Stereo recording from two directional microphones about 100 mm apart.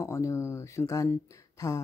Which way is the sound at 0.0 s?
30° left (ahead or behind).